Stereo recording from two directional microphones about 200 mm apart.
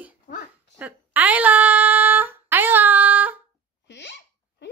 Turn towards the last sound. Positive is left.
turn(degrees=60)  # may be behind; listen again after turning